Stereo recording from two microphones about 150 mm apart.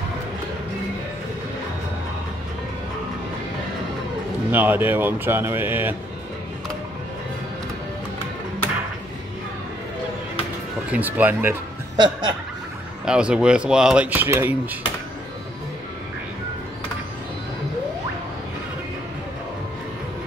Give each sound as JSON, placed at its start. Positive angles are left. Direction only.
{"t": 4.5, "sound": "speech", "side_deg": -10}
{"t": 10.9, "sound": "speech", "side_deg": -10}
{"t": 12.0, "sound": "snicker", "side_deg": -30}
{"t": 13.0, "sound": "speech", "side_deg": -5}